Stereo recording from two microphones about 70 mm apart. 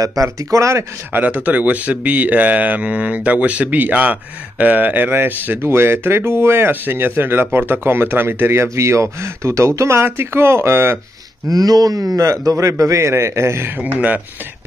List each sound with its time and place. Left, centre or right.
0.0 s a man's voice: right
1.1 s speech: right
11.4 s a man's voice: right